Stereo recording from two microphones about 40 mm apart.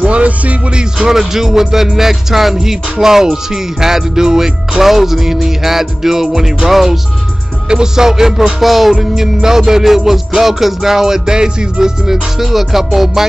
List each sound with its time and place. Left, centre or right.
0.0 s music: right
0.7 s speech: centre
1.1 s music: centre
7.6 s music: centre
12.4 s music: centre